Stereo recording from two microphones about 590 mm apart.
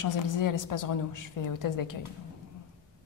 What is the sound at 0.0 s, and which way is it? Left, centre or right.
A woman's voice, left.